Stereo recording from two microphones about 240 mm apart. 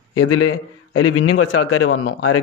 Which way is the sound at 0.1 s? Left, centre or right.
Left.